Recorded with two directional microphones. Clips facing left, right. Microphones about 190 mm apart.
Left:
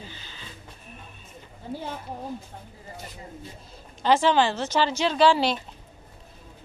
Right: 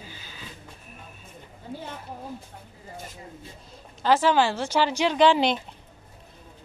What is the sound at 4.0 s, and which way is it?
A woman's voice, 5° right (ahead or behind).